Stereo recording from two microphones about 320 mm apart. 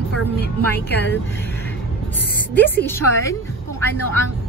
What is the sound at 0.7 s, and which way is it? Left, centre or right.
Speech, left.